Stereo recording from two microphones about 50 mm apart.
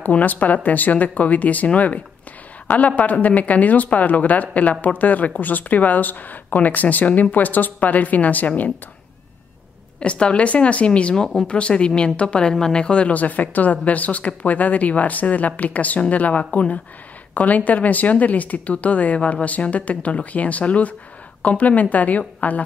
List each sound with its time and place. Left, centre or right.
0.0 s a woman's voice: left
3.0 s speech: left
9.9 s a woman's voice: left